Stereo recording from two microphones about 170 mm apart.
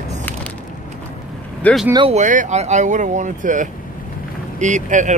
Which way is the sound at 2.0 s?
45° right (ahead or behind).